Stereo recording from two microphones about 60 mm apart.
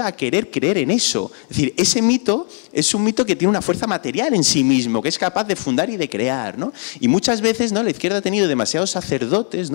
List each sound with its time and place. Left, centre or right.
0.0 s speech: centre